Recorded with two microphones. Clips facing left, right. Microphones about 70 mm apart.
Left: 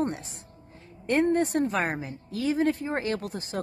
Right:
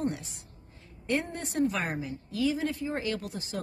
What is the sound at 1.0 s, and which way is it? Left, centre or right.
A woman's voice, left.